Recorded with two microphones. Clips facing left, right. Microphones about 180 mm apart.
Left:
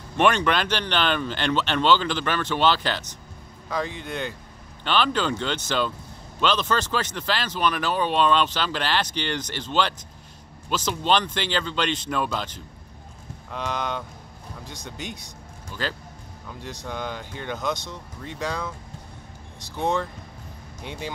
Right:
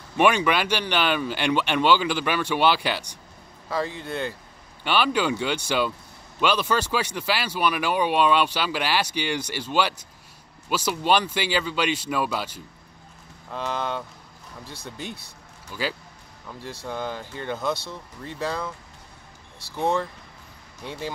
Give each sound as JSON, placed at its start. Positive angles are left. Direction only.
{"t": 0.2, "sound": "speech", "side_deg": -10}
{"t": 15.0, "sound": "speech", "side_deg": 15}
{"t": 15.7, "sound": "speech", "side_deg": -10}
{"t": 19.8, "sound": "speech", "side_deg": -5}